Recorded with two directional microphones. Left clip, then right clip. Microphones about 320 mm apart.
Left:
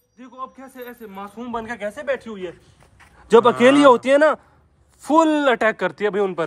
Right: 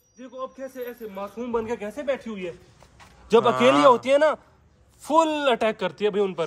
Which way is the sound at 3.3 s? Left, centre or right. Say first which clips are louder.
Left 5 dB; left.